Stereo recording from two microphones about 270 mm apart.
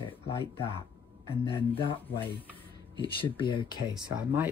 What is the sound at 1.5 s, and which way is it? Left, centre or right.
Speech, centre.